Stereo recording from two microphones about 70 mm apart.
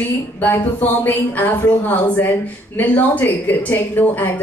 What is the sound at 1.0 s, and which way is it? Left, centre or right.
A woman's voice, left.